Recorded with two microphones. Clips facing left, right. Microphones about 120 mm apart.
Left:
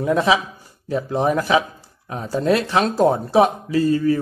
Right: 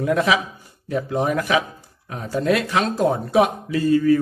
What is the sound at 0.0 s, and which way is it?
Speech, 30° left (ahead or behind).